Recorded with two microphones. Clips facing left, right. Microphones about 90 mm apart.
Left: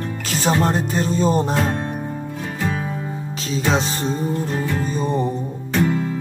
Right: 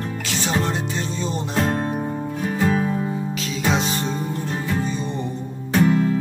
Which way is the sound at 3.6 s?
35° left (ahead or behind).